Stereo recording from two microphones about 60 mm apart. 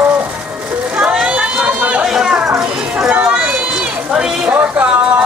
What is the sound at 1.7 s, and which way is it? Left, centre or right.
Run, right.